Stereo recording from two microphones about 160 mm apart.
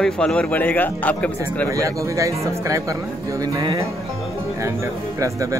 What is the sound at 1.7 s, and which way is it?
Speech, 20° right (ahead or behind).